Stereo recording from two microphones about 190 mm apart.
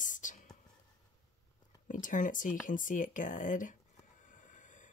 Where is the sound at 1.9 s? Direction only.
45° left (ahead or behind).